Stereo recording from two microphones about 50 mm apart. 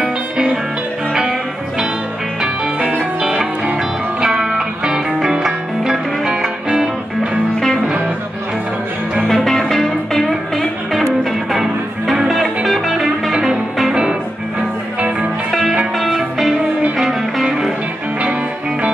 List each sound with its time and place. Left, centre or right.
0.0 s music: centre
3.2 s music: centre
9.3 s music: centre
13.3 s music: centre
15.0 s music: right
16.0 s music: centre